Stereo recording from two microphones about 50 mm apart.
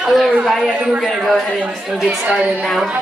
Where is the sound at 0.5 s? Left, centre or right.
Centre.